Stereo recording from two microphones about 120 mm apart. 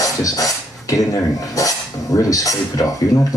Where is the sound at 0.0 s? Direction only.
30° left (ahead or behind).